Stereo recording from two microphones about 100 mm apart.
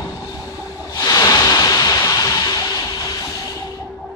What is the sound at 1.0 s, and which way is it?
Waves, 40° left (ahead or behind).